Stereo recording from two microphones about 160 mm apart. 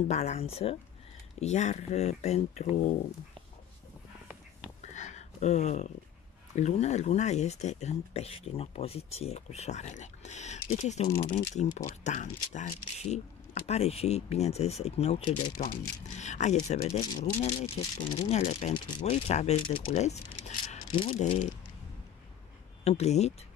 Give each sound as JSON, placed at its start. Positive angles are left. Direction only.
{"t": 0.1, "sound": "speech", "side_deg": 45}
{"t": 4.8, "sound": "a sound", "side_deg": 45}
{"t": 6.5, "sound": "speech", "side_deg": 45}
{"t": 15.5, "sound": "speech", "side_deg": 60}
{"t": 19.7, "sound": "speech", "side_deg": 35}
{"t": 20.0, "sound": "speech", "side_deg": 45}
{"t": 20.9, "sound": "speech", "side_deg": 30}
{"t": 22.8, "sound": "speech", "side_deg": 45}